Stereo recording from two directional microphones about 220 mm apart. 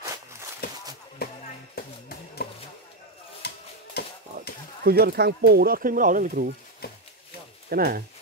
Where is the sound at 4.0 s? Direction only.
45° left (ahead or behind).